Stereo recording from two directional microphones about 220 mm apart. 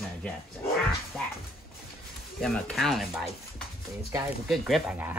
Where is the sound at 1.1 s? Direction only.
Centre (ahead or behind).